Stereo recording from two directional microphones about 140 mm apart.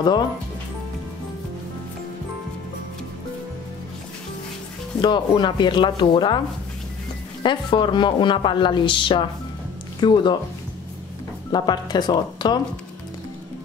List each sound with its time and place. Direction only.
5.0 s speech: 35° left (ahead or behind)
7.4 s speech: 35° left (ahead or behind)
11.5 s speech: 30° left (ahead or behind)